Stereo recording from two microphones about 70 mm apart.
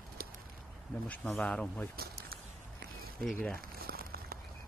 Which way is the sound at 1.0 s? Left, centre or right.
Left.